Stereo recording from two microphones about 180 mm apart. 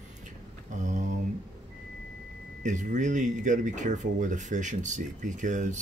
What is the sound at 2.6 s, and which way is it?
Speech, 45° right (ahead or behind).